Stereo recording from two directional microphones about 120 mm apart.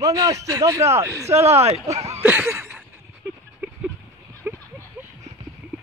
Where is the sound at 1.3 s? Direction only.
60° right (ahead or behind).